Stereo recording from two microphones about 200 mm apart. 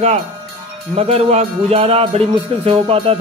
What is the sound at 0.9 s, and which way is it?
Music, 30° right (ahead or behind).